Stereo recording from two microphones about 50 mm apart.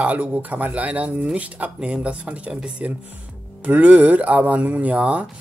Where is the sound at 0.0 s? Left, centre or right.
Right.